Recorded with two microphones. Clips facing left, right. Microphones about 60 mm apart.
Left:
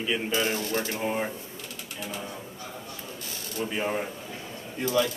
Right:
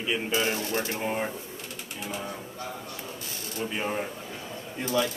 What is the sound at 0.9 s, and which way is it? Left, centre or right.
Speech, centre.